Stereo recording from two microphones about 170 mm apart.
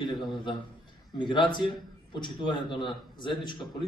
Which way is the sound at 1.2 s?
30° left (ahead or behind).